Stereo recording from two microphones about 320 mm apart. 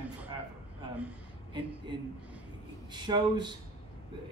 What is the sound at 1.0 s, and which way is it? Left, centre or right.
Speech, centre.